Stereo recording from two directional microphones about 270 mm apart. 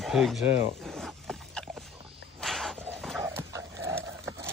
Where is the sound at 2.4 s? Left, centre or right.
Centre.